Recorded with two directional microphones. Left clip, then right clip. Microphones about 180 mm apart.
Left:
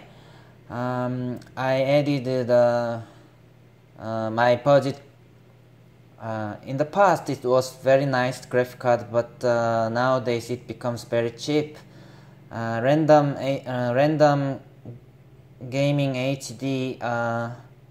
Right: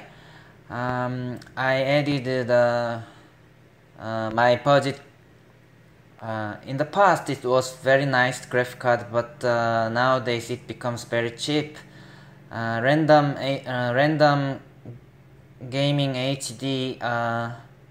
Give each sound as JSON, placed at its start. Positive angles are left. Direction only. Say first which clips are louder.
{"t": 0.3, "sound": "a sound", "louder": "right 1 dB", "side_deg": 20}
{"t": 1.4, "sound": "speech", "louder": "right 1 dB", "side_deg": 20}
{"t": 6.2, "sound": "speech", "louder": "even", "side_deg": 20}
{"t": 15.7, "sound": "speech", "louder": "left 1 dB", "side_deg": 20}